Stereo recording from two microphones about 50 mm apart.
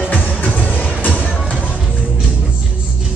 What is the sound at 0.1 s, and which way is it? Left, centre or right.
Music, left.